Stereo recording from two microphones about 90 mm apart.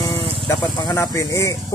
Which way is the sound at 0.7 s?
45° left (ahead or behind).